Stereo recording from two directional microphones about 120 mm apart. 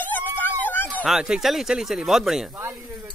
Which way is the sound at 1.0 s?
5° right (ahead or behind).